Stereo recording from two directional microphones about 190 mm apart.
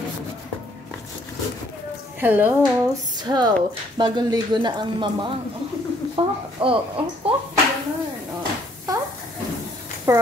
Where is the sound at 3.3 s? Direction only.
20° right (ahead or behind).